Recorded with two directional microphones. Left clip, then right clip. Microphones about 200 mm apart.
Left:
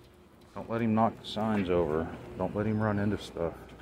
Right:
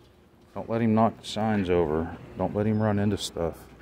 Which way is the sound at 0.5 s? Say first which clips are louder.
Right 4 dB; 45° right (ahead or behind).